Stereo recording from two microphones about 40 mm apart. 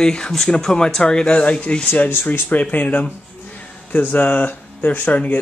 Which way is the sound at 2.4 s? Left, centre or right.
Left.